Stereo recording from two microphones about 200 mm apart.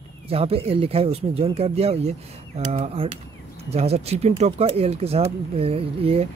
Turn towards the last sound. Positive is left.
turn(degrees=-30)  # may be behind; listen again after turning